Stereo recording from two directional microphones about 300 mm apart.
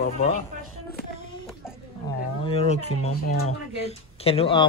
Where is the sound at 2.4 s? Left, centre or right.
Centre.